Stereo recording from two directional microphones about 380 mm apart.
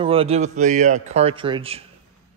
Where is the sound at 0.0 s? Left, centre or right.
Centre.